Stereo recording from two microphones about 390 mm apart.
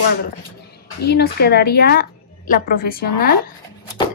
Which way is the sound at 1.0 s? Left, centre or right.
Left.